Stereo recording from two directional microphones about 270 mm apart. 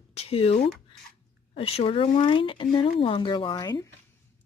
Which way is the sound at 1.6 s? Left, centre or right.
Left.